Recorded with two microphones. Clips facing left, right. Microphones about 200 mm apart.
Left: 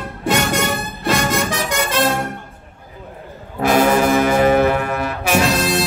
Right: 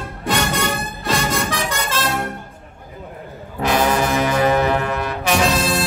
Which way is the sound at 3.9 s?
50° left (ahead or behind).